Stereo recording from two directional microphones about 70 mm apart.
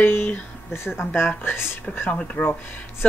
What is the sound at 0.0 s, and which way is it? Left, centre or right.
Speech, left.